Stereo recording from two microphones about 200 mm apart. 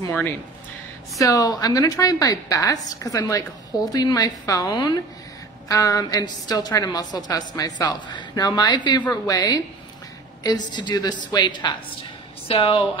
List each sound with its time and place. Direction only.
0.0 s a woman's voice: 10° left (ahead or behind); by 12.8 s 25° left (ahead or behind)